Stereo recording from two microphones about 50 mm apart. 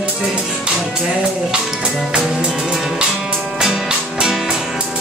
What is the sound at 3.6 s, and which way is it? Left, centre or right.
Music, centre.